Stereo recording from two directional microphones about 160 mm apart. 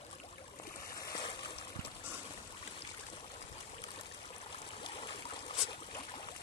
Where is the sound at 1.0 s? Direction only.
25° left (ahead or behind).